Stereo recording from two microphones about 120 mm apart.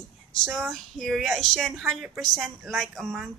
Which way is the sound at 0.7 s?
Centre (ahead or behind).